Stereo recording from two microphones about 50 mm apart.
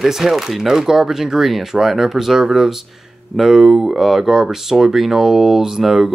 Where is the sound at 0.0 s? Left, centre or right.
Centre.